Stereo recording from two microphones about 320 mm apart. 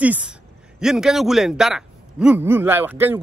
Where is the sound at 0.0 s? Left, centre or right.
Centre.